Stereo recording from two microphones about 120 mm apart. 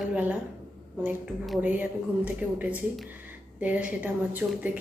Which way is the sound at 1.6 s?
10° right (ahead or behind).